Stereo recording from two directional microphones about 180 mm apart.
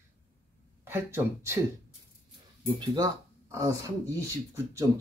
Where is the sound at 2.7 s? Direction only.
20° right (ahead or behind).